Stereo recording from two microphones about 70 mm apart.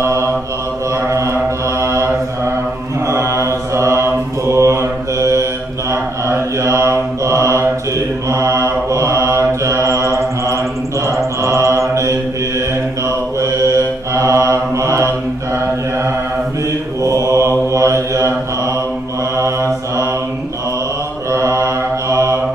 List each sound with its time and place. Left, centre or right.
0.0 s mantra: right
3.1 s mantra: right
13.4 s mantra: right
17.0 s mantra: right
19.3 s mantra: right
21.3 s mantra: right